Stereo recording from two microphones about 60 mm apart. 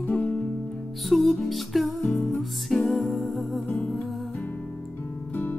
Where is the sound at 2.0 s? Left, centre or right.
Centre.